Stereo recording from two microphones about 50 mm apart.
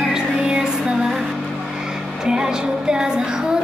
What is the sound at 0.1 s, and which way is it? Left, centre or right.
Music, centre.